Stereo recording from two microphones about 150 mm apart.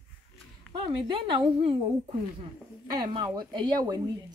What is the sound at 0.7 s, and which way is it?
A woman's voice, 35° right (ahead or behind).